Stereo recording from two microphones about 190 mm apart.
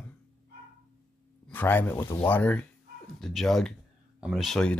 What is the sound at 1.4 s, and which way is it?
Speech, 10° left (ahead or behind).